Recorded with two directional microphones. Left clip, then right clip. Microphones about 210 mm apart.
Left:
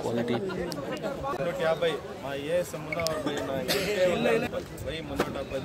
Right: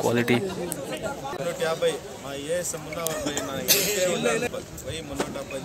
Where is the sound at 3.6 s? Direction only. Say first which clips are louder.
Right 6 dB; 15° right (ahead or behind).